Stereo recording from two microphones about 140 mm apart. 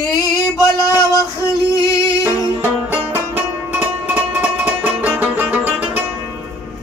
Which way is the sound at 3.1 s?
10° right (ahead or behind).